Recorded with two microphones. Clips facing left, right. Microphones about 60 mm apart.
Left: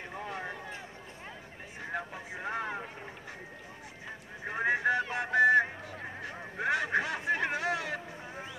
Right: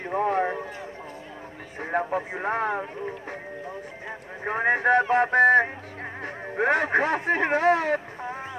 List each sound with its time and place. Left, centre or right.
0.0 s a sound: right
1.8 s speech: right
4.5 s speech: right